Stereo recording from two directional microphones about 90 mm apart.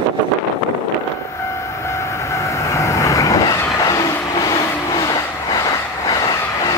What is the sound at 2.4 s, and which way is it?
Vehicle, 35° left (ahead or behind).